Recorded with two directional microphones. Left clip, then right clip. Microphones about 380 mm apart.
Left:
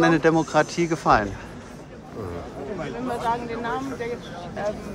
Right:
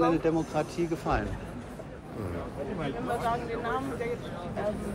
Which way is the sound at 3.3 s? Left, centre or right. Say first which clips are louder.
Left 7 dB; left.